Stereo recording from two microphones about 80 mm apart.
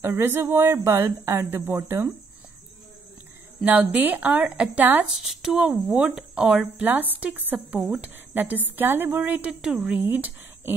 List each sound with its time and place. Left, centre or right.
0.0 s speech: right
3.6 s a woman's voice: centre
5.4 s speech: centre
6.8 s a woman's voice: right
9.5 s speech: centre
9.8 s speech: right